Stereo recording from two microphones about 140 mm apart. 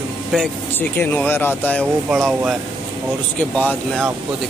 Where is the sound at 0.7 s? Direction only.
15° left (ahead or behind).